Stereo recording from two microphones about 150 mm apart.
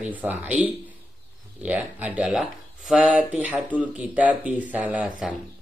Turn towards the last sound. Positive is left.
turn(degrees=-5)  # may be behind; listen again after turning